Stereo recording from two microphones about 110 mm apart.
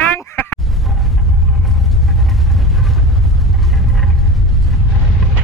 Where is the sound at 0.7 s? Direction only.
Centre (ahead or behind).